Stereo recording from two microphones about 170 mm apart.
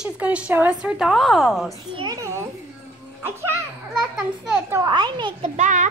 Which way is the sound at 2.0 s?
20° right (ahead or behind).